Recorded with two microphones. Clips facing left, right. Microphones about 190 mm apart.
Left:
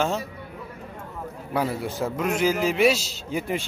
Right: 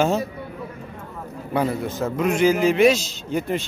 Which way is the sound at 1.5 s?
5° left (ahead or behind).